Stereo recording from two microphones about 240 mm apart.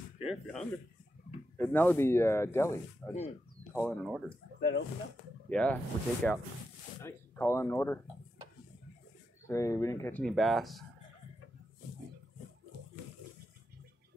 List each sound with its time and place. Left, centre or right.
0.2 s speech: centre
4.6 s speech: left
5.5 s speech: centre
9.5 s speech: centre